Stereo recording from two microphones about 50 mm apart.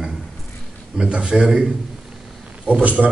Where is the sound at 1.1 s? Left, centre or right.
Right.